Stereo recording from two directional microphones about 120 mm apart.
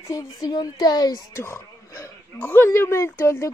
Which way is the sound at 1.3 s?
20° left (ahead or behind).